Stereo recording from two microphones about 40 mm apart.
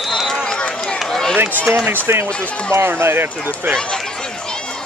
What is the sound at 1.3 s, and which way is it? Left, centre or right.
Speech, right.